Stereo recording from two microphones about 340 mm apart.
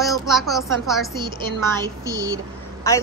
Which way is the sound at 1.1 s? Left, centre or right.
Centre.